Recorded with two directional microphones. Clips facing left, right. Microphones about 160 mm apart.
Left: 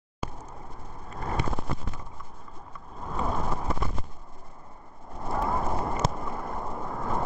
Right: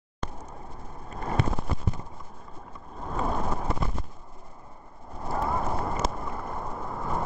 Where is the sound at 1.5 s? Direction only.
Centre (ahead or behind).